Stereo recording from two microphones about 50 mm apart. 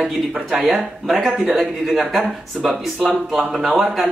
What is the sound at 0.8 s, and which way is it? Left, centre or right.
Speech, centre.